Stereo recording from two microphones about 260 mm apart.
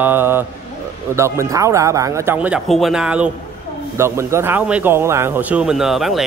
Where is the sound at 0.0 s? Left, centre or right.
Centre.